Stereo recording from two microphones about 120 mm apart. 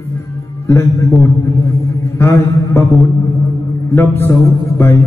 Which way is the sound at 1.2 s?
25° left (ahead or behind).